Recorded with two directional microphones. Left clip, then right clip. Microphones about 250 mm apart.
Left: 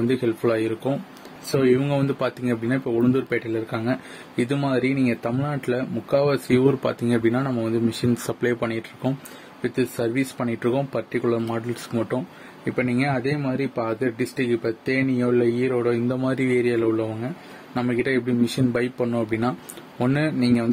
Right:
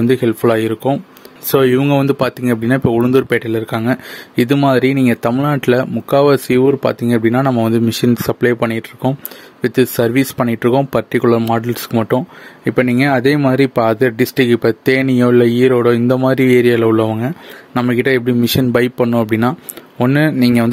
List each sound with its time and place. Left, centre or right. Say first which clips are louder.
0.1 s speech: right 11 dB; right